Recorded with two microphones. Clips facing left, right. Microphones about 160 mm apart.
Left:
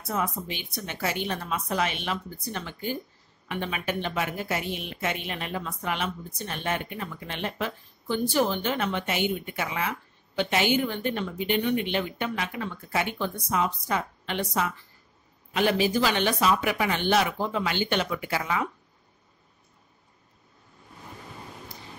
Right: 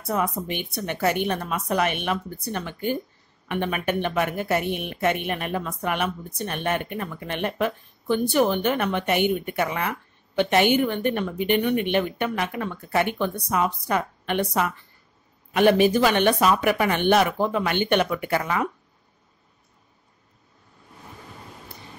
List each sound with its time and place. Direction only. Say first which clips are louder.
0.1 s a woman's voice: right 4 dB; 60° right (ahead or behind)